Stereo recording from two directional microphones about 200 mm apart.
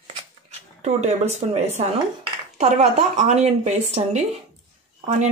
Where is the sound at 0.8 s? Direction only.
35° right (ahead or behind).